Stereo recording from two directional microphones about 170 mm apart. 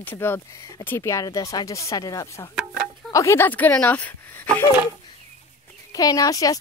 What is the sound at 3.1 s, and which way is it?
Speech, 15° left (ahead or behind).